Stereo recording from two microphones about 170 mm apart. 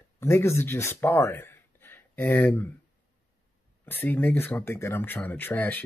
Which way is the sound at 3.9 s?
10° left (ahead or behind).